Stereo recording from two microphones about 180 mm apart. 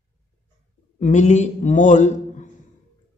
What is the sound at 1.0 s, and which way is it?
Speech, 40° left (ahead or behind).